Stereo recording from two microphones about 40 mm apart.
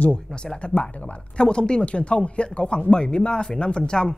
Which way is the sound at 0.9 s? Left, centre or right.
Left.